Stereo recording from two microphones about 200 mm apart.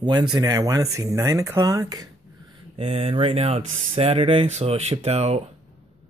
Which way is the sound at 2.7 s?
30° right (ahead or behind).